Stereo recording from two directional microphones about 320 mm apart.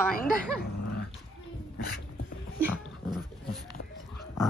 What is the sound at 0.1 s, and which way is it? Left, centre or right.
Speech, left.